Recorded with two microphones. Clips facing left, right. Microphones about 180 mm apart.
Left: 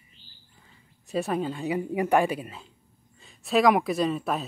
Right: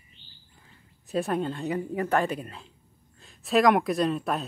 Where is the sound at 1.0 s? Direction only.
Centre (ahead or behind).